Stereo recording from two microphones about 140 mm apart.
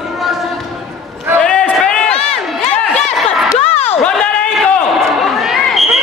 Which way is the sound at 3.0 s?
50° left (ahead or behind).